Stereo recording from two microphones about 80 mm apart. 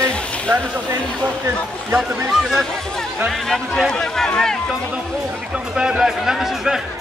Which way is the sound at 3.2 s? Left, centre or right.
Centre.